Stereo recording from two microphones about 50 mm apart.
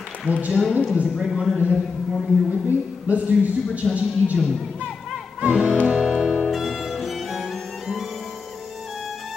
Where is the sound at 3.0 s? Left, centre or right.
Right.